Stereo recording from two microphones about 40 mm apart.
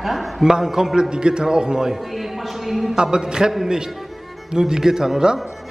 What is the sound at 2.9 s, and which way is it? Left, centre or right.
A man's voice, centre.